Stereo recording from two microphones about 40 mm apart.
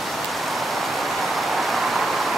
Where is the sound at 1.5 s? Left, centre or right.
Centre.